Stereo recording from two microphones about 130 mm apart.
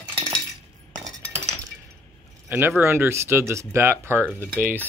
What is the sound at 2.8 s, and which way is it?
Speech, 20° right (ahead or behind).